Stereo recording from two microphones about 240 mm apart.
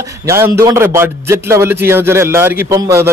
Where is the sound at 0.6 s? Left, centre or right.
Centre.